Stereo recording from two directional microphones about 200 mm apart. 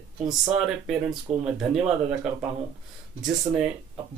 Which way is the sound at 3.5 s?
15° right (ahead or behind).